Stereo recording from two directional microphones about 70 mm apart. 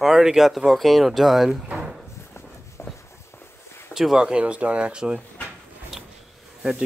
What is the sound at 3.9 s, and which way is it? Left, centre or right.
Speech, centre.